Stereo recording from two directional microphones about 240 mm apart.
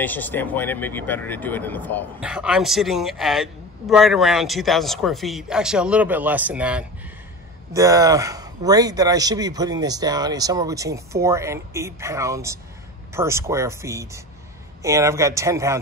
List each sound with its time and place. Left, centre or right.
0.0 s speech: centre
2.1 s a man's voice: centre